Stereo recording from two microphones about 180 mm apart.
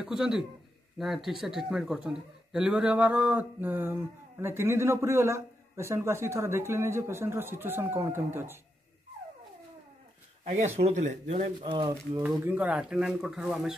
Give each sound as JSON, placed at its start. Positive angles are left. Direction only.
{"t": 0.0, "sound": "a man's voice", "side_deg": -5}
{"t": 10.4, "sound": "speech", "side_deg": -40}
{"t": 12.2, "sound": "speech", "side_deg": -10}